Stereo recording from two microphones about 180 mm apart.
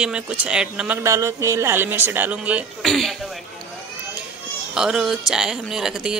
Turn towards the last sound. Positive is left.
turn(degrees=-5)  # may be behind; listen again after turning